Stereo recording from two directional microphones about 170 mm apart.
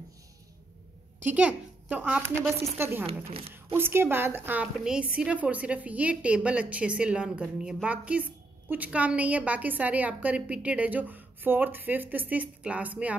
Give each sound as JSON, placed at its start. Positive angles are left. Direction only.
{"t": 1.2, "sound": "a woman's voice", "side_deg": -5}
{"t": 3.3, "sound": "a woman's voice", "side_deg": -35}
{"t": 3.5, "sound": "a woman's voice", "side_deg": -15}